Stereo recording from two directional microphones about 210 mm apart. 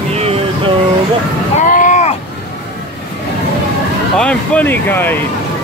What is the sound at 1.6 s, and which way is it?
Vehicle, 40° left (ahead or behind).